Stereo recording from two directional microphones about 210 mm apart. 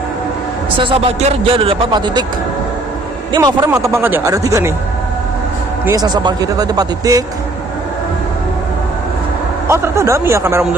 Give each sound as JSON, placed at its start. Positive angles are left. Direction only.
{"t": 0.7, "sound": "a man's voice", "side_deg": -25}
{"t": 3.3, "sound": "speech", "side_deg": -20}
{"t": 5.9, "sound": "speech", "side_deg": -20}
{"t": 9.7, "sound": "speech", "side_deg": -15}